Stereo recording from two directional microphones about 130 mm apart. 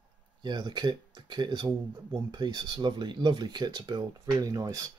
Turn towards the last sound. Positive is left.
turn(degrees=-25)  # may be behind; listen again after turning